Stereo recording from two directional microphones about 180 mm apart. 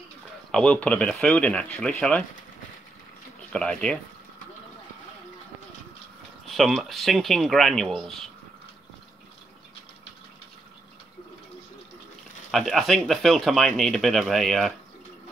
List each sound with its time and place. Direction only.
0.5 s speech: 5° left (ahead or behind)
3.5 s speech: 5° left (ahead or behind)
6.4 s speech: centre (ahead or behind)
12.4 s speech: centre (ahead or behind)